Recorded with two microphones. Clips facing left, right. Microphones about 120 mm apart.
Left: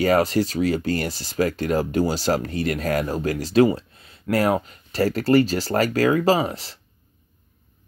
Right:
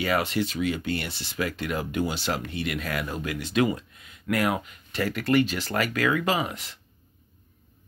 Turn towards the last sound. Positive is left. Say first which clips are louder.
# left 7 dB
turn(degrees=35)  # may be behind; listen again after turning